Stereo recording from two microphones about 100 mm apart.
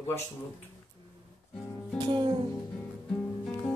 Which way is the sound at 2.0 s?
55° right (ahead or behind).